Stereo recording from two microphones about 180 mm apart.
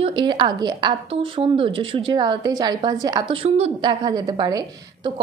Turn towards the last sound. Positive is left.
turn(degrees=-25)  # may be behind; listen again after turning